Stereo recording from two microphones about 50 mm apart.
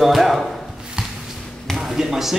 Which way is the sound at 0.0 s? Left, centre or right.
Centre.